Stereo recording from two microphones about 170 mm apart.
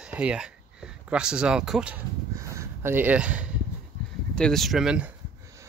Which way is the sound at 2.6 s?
15° right (ahead or behind).